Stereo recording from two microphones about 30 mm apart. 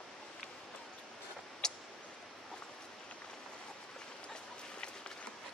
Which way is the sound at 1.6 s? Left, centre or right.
Left.